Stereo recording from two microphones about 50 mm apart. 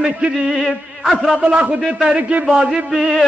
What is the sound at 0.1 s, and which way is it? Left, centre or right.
A man's voice, right.